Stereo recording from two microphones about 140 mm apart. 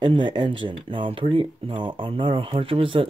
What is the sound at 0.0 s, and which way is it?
Speech, 35° right (ahead or behind).